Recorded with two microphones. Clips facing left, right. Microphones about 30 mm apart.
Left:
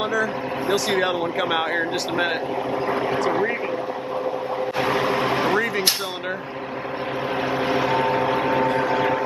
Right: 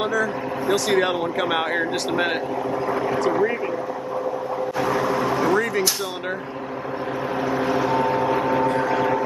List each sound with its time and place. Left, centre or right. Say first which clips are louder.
0.0 s speech: even; centre
2.9 s speech: even; left
4.7 s vehicle: even; left
7.4 s vehicle: right 1 dB; left